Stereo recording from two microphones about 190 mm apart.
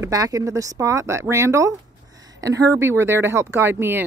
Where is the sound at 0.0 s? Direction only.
20° right (ahead or behind).